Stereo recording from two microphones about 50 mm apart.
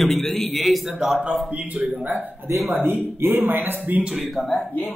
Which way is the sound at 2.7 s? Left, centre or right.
Right.